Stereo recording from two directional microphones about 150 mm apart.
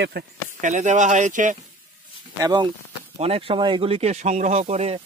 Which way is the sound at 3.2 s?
40° right (ahead or behind).